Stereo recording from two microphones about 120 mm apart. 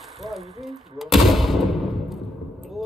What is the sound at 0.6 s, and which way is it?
Artillery fire, centre (ahead or behind).